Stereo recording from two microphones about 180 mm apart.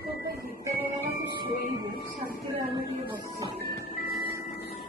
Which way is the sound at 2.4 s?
20° right (ahead or behind).